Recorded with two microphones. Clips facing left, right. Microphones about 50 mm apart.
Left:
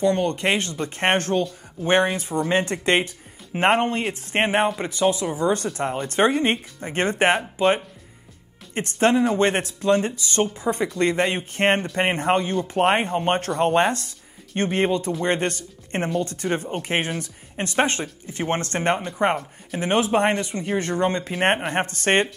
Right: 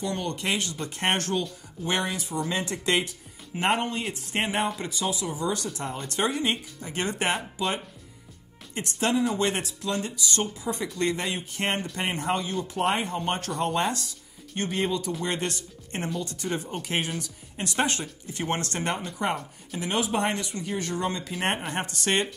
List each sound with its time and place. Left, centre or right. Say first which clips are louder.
0.0 s speech: left 9 dB; left